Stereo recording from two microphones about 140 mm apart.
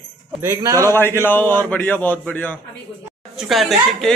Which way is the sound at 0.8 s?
15° left (ahead or behind).